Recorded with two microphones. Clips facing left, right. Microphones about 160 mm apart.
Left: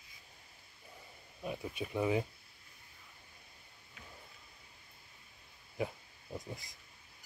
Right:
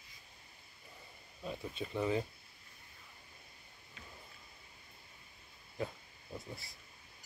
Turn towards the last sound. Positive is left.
turn(degrees=10)  # may be behind; listen again after turning